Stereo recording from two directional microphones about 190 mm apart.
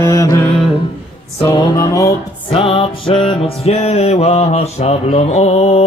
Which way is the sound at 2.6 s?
30° left (ahead or behind).